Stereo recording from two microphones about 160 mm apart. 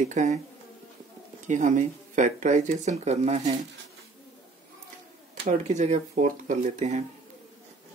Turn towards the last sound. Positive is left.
turn(degrees=-45)  # may be behind; listen again after turning